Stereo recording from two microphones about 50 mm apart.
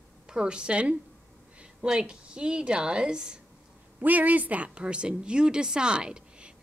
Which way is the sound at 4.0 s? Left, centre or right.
Right.